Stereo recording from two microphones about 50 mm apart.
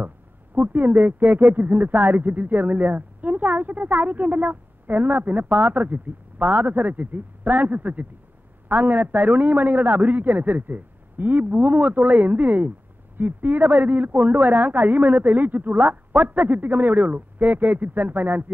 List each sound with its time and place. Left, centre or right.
0.6 s speech: right